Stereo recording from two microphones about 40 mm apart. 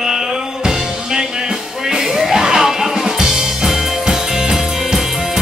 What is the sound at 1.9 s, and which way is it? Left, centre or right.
Music, centre.